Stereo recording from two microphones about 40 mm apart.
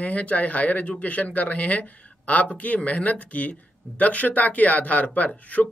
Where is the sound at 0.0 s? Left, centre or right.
Left.